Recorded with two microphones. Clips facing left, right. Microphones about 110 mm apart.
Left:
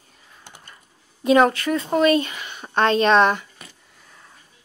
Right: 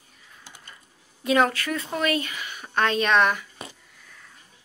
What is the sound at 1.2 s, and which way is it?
Speech, 25° left (ahead or behind).